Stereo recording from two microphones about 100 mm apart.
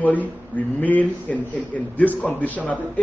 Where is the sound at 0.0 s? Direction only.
15° left (ahead or behind).